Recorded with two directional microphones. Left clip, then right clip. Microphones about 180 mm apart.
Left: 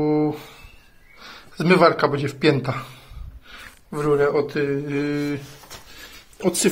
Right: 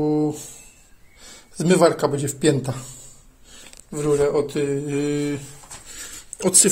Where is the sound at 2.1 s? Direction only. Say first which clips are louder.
Left 1 dB; 30° right (ahead or behind).